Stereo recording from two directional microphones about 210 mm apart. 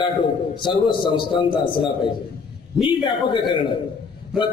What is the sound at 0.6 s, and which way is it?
A man's voice, 20° left (ahead or behind).